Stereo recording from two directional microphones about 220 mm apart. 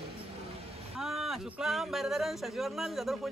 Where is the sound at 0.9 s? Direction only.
Centre (ahead or behind).